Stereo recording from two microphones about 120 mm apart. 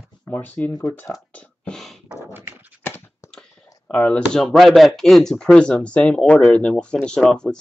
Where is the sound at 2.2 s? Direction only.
15° right (ahead or behind).